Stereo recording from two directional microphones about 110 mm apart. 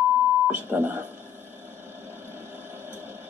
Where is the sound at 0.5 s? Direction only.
20° right (ahead or behind).